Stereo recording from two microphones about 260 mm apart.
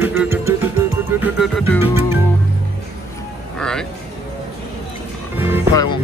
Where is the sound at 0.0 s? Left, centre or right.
Centre.